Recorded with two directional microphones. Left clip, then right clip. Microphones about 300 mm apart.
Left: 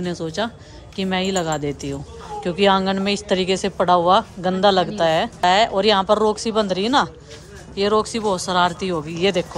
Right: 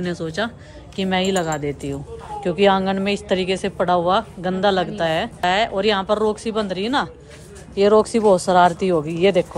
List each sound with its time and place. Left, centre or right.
0.0 s a woman's voice: centre